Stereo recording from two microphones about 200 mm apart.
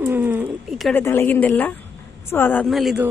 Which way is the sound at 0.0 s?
10° right (ahead or behind).